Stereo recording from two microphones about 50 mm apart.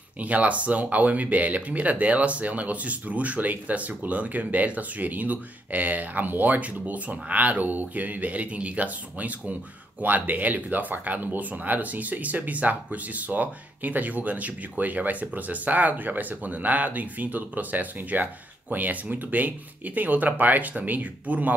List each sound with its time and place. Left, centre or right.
0.2 s speech: right